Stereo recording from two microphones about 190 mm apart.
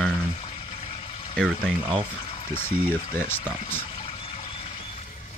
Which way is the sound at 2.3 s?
30° left (ahead or behind).